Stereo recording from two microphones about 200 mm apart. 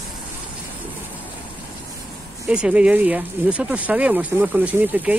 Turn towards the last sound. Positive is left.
turn(degrees=-10)  # may be behind; listen again after turning